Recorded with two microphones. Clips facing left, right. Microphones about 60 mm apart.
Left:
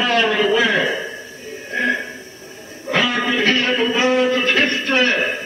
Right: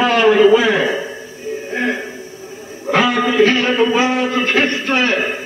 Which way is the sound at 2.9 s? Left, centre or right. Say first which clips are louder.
Right 4 dB; centre.